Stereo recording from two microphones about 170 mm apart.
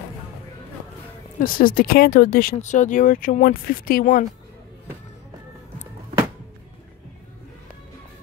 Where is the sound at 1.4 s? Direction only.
55° left (ahead or behind).